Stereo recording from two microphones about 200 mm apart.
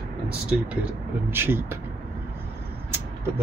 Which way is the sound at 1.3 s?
10° right (ahead or behind).